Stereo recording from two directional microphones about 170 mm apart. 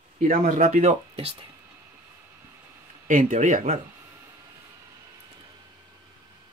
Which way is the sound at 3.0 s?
45° right (ahead or behind).